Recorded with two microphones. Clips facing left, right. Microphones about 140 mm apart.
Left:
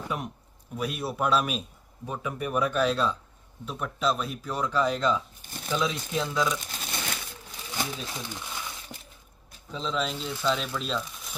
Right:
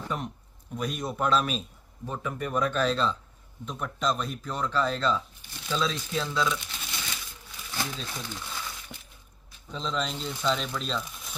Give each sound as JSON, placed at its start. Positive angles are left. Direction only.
{"t": 0.0, "sound": "speech", "side_deg": 10}
{"t": 5.4, "sound": "crumpling", "side_deg": 45}
{"t": 5.7, "sound": "speech", "side_deg": 15}
{"t": 6.6, "sound": "crumpling", "side_deg": 45}
{"t": 7.7, "sound": "speech", "side_deg": 15}
{"t": 9.7, "sound": "speech", "side_deg": 5}